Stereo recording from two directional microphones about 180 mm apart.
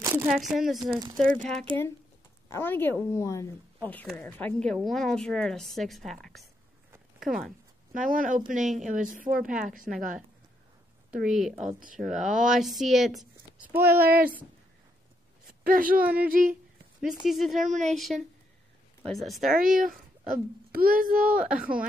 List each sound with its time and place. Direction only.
0.0 s a sound: 15° right (ahead or behind)
0.3 s speech: centre (ahead or behind)
7.9 s a child's voice: 50° right (ahead or behind)
11.2 s speech: centre (ahead or behind)
11.5 s a child's voice: 45° right (ahead or behind)
12.2 s speech: 5° right (ahead or behind)
13.9 s speech: 55° right (ahead or behind)
15.6 s speech: 50° right (ahead or behind)
16.0 s speech: 10° right (ahead or behind)
16.3 s a child's voice: 50° right (ahead or behind)
17.2 s speech: centre (ahead or behind)
19.5 s a child's voice: 50° right (ahead or behind)
21.5 s speech: 5° right (ahead or behind)